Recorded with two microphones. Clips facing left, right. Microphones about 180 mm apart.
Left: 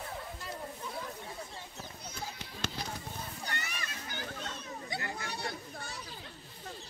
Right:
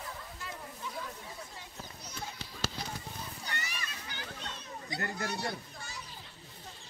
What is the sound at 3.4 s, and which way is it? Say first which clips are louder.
Children playing: even; 55° left (ahead or behind).